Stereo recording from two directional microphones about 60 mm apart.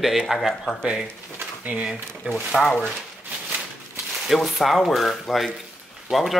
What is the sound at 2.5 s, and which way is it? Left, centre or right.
Speech, centre.